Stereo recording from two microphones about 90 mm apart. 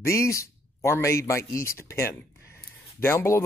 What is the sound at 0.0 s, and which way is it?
Speech, 35° left (ahead or behind).